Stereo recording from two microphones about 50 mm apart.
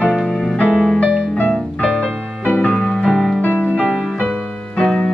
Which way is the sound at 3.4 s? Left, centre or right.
Left.